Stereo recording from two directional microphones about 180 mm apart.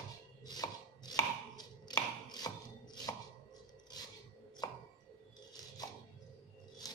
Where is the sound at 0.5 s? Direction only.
20° left (ahead or behind).